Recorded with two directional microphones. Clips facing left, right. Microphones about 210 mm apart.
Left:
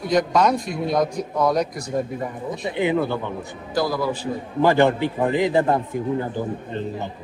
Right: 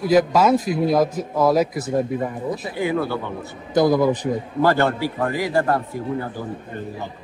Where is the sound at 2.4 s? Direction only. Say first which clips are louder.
Left 5 dB; 20° left (ahead or behind).